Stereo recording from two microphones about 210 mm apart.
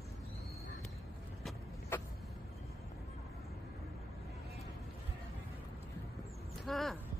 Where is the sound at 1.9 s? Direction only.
10° left (ahead or behind).